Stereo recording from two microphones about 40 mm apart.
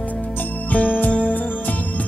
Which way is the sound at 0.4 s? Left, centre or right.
Left.